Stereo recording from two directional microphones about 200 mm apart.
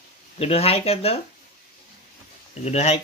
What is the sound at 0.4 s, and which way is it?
Speech, 30° left (ahead or behind).